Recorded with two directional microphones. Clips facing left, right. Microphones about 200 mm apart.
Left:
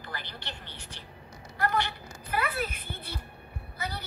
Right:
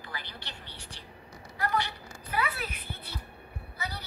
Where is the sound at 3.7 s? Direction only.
50° left (ahead or behind).